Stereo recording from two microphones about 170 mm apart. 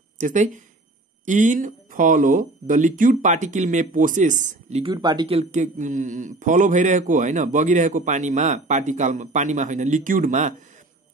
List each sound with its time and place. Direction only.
0.2 s speech: 50° right (ahead or behind)
4.9 s speech: 25° right (ahead or behind); by 10.5 s 50° right (ahead or behind)